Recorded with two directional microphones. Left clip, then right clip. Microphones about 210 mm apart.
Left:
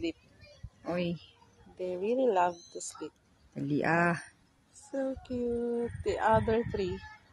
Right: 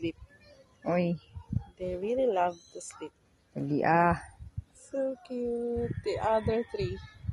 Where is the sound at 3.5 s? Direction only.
Centre (ahead or behind).